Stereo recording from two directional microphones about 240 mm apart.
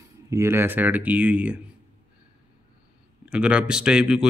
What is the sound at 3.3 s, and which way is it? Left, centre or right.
Speech, centre.